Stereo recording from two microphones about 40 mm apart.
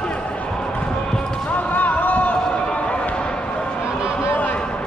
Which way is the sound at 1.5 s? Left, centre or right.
Left.